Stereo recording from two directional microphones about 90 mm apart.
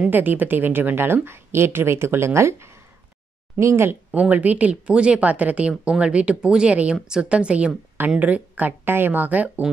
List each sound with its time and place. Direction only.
0.1 s speech: 20° right (ahead or behind)
4.1 s a woman's voice: 15° right (ahead or behind)